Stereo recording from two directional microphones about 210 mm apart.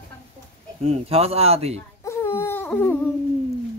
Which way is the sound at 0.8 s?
30° right (ahead or behind).